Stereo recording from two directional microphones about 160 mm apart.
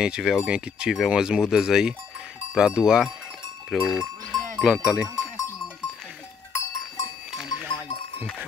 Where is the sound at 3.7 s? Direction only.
Centre (ahead or behind).